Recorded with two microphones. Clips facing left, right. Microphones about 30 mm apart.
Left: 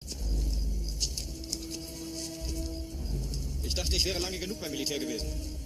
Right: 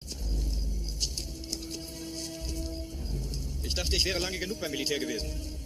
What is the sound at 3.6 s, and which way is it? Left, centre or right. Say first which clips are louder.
Speech: right 2 dB; centre.